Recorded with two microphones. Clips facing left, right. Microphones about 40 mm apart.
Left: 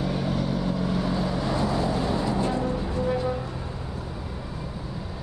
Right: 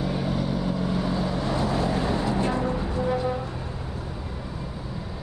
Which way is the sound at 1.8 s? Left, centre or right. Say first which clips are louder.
Even; right.